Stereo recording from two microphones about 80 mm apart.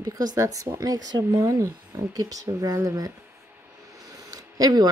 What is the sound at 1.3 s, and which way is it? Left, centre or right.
A woman's voice, right.